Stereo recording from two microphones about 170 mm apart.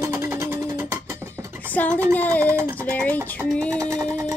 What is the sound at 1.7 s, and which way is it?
Speech, 10° left (ahead or behind).